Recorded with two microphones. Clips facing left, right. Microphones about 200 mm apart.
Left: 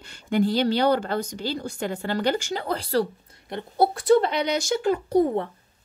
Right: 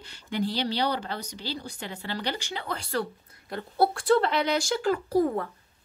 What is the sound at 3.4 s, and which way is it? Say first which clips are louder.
Speech: left 2 dB; 20° left (ahead or behind).